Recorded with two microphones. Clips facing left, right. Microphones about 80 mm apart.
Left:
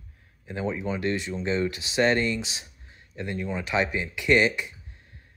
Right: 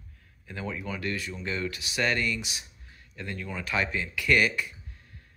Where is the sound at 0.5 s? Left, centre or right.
Left.